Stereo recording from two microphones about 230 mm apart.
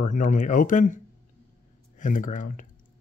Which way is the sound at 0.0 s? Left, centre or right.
Left.